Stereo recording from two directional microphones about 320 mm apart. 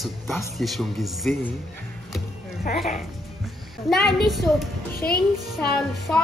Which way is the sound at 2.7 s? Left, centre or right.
Left.